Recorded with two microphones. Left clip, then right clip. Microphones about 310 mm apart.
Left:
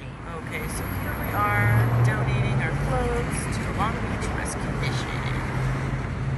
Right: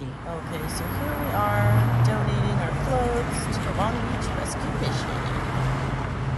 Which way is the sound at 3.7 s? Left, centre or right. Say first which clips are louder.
Even; centre.